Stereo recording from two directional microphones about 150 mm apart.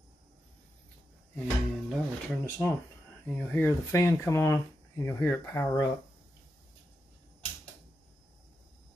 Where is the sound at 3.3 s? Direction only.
15° left (ahead or behind).